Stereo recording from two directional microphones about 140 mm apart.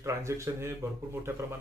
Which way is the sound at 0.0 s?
20° right (ahead or behind).